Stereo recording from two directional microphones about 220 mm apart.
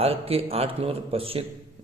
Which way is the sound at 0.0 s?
25° right (ahead or behind).